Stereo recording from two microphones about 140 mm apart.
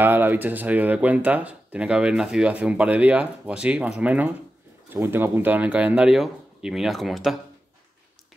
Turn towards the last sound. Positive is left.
turn(degrees=0)  # may be behind; listen again after turning